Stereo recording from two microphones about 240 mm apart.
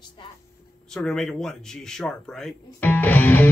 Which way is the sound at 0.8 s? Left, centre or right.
Centre.